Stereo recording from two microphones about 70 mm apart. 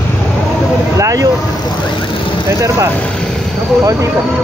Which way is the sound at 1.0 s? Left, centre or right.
Right.